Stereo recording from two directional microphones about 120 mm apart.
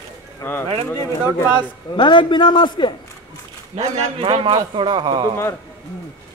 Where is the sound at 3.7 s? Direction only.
50° right (ahead or behind).